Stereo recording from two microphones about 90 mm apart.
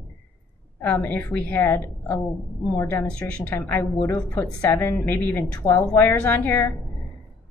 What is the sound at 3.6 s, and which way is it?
A woman's voice, 30° left (ahead or behind).